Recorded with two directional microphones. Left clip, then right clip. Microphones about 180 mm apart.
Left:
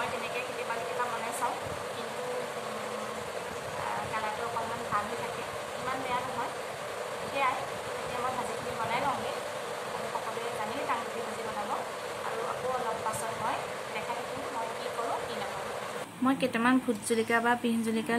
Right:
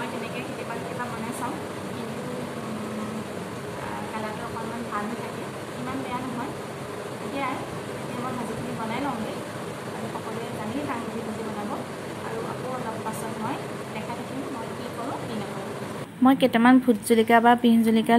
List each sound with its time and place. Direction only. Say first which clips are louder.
16.3 s a woman's voice: right 9 dB; 20° right (ahead or behind)